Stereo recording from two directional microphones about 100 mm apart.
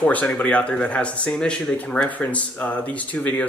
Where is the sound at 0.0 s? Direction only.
15° left (ahead or behind).